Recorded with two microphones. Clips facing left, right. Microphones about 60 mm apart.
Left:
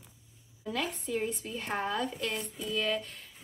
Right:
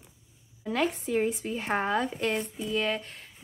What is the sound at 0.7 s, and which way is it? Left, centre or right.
Speech, right.